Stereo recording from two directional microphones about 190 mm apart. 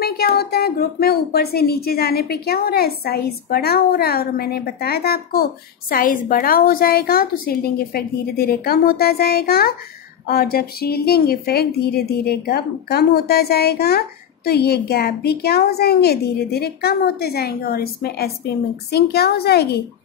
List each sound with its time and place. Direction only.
0.0 s a woman's voice: 55° left (ahead or behind)